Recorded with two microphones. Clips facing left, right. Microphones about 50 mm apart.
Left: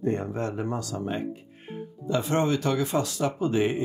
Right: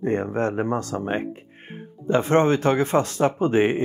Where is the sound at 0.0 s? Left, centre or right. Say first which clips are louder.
Right 5 dB; right.